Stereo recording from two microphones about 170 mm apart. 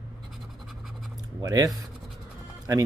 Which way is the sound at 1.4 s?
20° right (ahead or behind).